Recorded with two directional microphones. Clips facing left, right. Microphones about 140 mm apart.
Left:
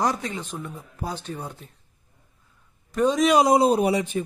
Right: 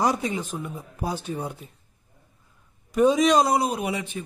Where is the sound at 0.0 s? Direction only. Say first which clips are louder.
Right 2 dB; 10° right (ahead or behind).